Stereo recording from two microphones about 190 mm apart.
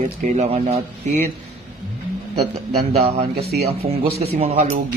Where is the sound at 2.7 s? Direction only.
30° right (ahead or behind).